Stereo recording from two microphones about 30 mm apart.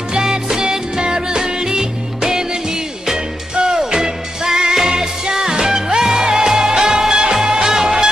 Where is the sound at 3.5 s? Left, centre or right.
Right.